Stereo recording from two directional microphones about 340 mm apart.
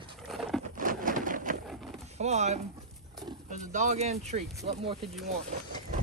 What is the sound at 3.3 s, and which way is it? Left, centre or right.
Roaring cats, right.